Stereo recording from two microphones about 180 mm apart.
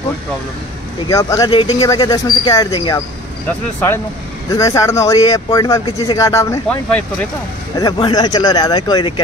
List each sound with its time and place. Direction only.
1.0 s speech: 20° left (ahead or behind)
4.5 s speech: 20° left (ahead or behind)
7.7 s speech: 20° left (ahead or behind)